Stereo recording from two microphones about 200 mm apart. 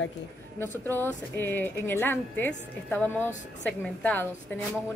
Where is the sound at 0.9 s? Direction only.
10° left (ahead or behind).